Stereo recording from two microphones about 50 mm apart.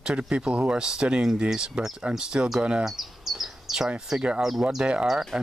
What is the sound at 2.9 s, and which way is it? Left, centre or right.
Bird, centre.